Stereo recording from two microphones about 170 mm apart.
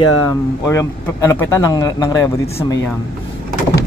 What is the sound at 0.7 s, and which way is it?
Speech, 15° left (ahead or behind).